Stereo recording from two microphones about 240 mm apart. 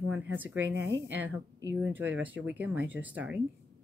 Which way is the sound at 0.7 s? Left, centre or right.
Right.